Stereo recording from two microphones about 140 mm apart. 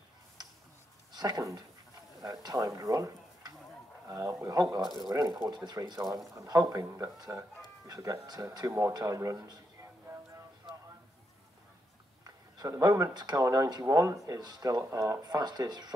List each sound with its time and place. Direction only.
1.1 s speech: 25° right (ahead or behind)
10.1 s a sound: 20° right (ahead or behind)
12.5 s speech: 25° right (ahead or behind)